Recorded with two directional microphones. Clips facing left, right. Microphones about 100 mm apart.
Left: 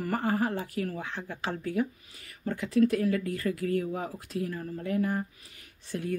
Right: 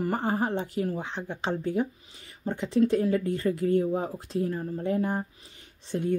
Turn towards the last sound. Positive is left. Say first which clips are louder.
# right 5 dB
turn(degrees=-25)  # may be behind; listen again after turning